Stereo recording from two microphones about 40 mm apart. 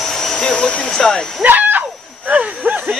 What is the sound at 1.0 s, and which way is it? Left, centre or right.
Speech, centre.